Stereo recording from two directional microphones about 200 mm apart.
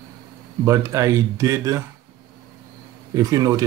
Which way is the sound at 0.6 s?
15° right (ahead or behind).